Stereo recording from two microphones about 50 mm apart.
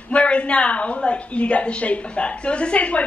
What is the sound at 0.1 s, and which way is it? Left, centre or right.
A woman's voice, left.